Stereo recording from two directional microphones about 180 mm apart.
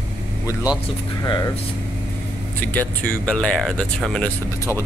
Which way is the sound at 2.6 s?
10° left (ahead or behind).